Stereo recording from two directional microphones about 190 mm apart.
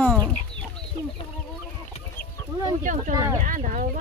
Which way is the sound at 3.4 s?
40° right (ahead or behind).